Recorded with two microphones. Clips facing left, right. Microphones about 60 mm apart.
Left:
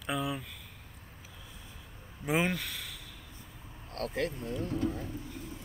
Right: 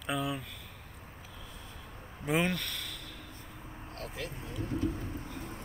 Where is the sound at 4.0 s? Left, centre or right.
Left.